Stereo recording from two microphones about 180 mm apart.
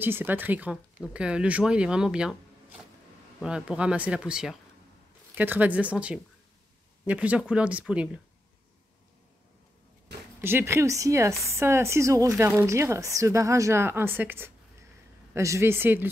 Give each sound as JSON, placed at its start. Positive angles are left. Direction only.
{"t": 0.0, "sound": "speech", "side_deg": -10}
{"t": 3.3, "sound": "a woman's voice", "side_deg": -5}
{"t": 10.4, "sound": "a woman's voice", "side_deg": -15}